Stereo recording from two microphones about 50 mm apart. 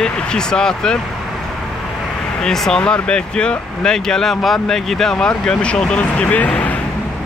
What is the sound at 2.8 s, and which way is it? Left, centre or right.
Speech, centre.